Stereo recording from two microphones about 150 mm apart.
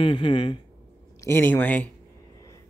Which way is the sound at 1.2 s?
15° left (ahead or behind).